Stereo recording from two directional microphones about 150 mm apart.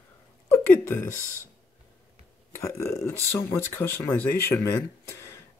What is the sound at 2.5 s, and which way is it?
Speech, 20° left (ahead or behind).